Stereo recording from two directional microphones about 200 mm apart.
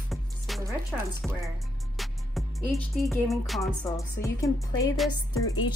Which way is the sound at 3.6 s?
15° left (ahead or behind).